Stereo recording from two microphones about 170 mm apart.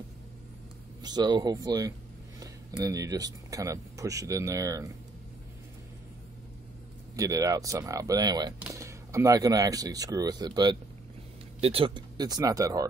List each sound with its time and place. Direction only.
1.0 s speech: 25° right (ahead or behind)
7.2 s speech: 20° right (ahead or behind)